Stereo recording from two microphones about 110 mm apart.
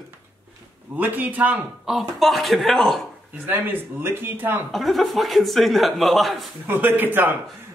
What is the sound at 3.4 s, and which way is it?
Speech, 15° right (ahead or behind).